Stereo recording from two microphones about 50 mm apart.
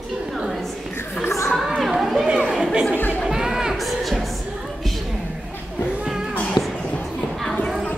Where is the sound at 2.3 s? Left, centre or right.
Centre.